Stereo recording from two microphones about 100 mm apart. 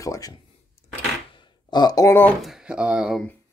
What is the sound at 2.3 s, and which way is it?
Speech, 5° right (ahead or behind).